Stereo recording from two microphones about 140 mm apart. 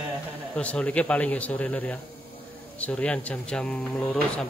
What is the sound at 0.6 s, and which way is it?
A man's voice, 10° left (ahead or behind).